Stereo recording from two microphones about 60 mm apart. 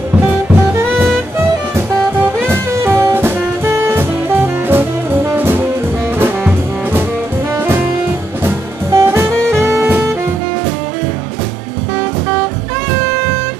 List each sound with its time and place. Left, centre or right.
2.4 s music: right
3.2 s jazz: right
6.4 s brass instrument: right
8.9 s saxophone: right
9.8 s saxophone: right